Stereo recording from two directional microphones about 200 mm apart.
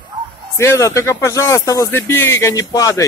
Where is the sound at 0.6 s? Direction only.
15° left (ahead or behind).